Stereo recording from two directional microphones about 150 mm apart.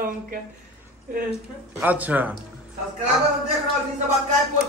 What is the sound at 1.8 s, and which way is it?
Speech, 10° right (ahead or behind).